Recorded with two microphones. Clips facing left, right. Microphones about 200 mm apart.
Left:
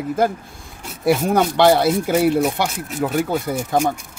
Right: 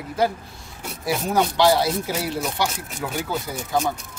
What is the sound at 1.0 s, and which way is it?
Speech, 60° left (ahead or behind).